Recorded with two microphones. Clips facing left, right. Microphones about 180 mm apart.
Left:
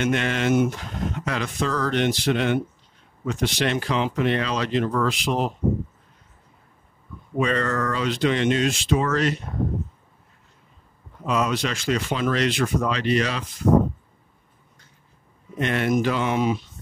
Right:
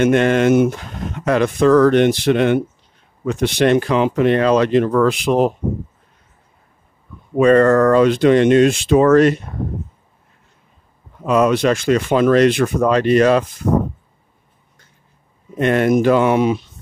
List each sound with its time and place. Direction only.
0.0 s speech: 50° right (ahead or behind)
7.3 s speech: 50° right (ahead or behind)
11.2 s speech: 55° right (ahead or behind)
15.6 s speech: 45° right (ahead or behind); by 16.6 s 70° right (ahead or behind)